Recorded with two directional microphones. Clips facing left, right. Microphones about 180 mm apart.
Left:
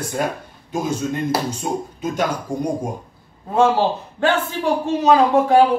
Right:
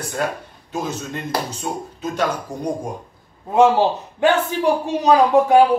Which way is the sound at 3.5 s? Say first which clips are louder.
Right 2 dB; 15° right (ahead or behind).